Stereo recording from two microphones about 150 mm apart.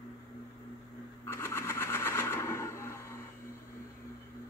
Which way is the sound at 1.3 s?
20° left (ahead or behind).